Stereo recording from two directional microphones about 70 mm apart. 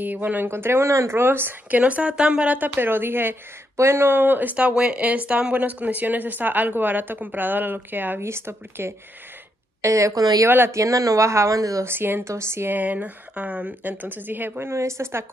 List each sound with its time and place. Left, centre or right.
0.0 s speech: right
0.5 s speech: right
8.2 s speech: right
9.8 s speech: right
11.8 s speech: right